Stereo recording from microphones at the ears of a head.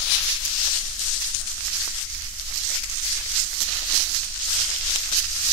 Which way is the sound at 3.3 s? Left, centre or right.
Right.